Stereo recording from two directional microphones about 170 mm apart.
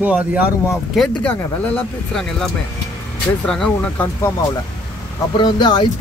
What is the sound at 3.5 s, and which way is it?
Speech, 5° left (ahead or behind).